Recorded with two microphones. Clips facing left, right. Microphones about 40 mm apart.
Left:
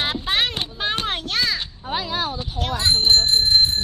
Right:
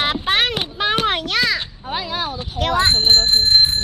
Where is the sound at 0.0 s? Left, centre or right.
Right.